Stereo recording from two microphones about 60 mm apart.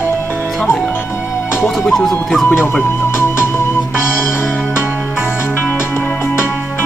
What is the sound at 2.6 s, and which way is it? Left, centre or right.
Speech, left.